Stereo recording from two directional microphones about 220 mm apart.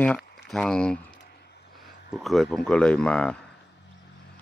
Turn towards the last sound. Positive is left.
turn(degrees=5)  # may be behind; listen again after turning